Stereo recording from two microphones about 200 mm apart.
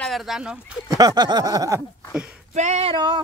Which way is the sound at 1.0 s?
20° right (ahead or behind).